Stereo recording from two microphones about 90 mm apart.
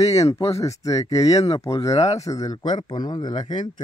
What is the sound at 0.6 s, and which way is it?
Speech, 35° left (ahead or behind).